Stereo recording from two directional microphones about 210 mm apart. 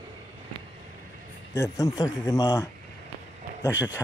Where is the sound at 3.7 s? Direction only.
10° right (ahead or behind).